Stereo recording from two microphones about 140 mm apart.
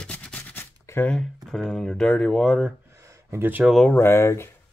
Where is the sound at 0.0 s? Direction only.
10° left (ahead or behind).